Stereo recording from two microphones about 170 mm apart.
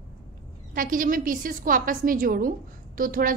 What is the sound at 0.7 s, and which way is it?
A woman's voice, 55° right (ahead or behind).